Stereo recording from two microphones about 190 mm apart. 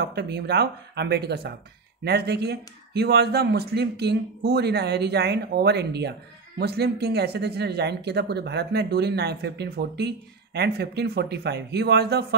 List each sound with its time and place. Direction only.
0.0 s speech: 60° right (ahead or behind)